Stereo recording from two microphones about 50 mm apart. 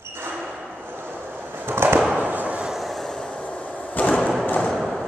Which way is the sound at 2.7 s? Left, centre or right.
Centre.